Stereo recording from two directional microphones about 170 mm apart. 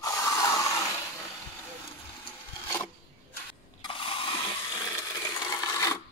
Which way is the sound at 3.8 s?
30° left (ahead or behind).